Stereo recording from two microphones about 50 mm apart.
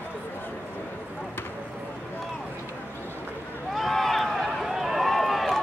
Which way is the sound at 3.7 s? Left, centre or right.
Centre.